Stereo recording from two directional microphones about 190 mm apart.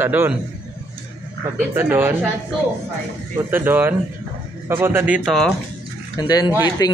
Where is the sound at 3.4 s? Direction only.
10° right (ahead or behind).